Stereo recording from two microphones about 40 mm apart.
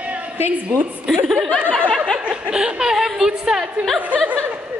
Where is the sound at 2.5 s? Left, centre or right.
Right.